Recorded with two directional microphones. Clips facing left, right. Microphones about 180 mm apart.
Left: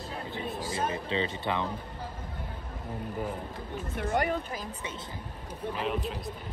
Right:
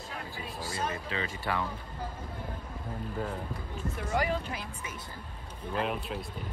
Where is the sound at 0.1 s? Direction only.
25° left (ahead or behind).